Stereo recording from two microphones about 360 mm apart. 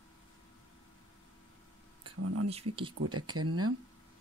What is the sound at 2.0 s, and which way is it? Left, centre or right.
Speech, right.